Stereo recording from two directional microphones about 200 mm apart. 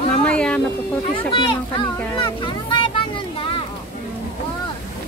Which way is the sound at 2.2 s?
25° left (ahead or behind).